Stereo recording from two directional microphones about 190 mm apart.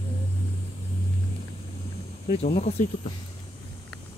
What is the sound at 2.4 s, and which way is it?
Speech, 35° left (ahead or behind).